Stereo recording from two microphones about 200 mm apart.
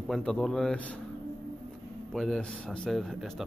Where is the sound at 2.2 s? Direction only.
5° left (ahead or behind).